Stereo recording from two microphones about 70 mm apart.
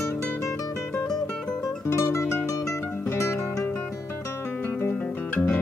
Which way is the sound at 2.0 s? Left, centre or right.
Left.